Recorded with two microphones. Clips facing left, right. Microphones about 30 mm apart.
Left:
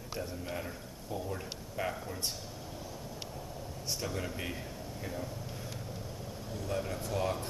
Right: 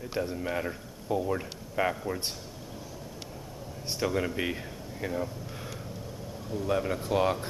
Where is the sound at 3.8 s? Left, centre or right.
Right.